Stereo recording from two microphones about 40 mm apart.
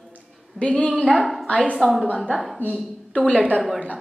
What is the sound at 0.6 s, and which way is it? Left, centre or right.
Speech, left.